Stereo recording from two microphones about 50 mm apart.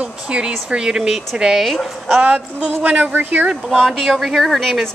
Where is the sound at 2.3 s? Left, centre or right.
Right.